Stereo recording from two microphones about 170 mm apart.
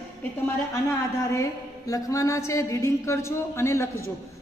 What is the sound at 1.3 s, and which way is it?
Speech, 20° left (ahead or behind).